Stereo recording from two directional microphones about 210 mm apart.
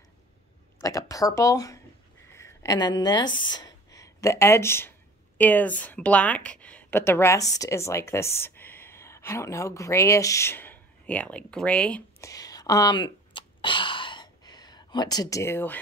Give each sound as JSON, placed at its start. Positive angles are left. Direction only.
{"t": 0.7, "sound": "speech", "side_deg": 15}